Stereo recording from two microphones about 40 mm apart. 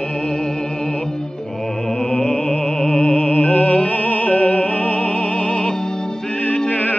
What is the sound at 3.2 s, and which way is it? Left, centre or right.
Music, left.